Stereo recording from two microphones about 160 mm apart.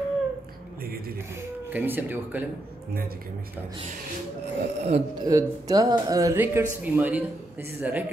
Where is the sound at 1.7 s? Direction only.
10° right (ahead or behind).